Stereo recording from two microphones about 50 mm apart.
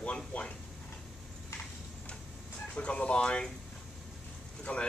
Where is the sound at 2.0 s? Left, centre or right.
Left.